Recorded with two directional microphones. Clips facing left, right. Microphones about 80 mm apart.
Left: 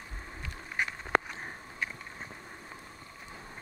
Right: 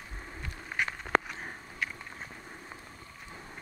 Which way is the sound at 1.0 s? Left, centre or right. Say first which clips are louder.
Even; centre.